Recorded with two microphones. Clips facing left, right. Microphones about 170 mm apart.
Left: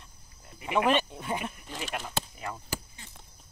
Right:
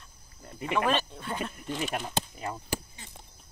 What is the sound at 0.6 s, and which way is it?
Speech, 15° left (ahead or behind).